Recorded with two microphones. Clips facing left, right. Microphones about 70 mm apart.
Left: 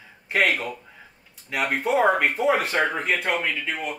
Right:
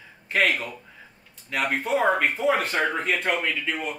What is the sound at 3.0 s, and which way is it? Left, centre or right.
Speech, centre.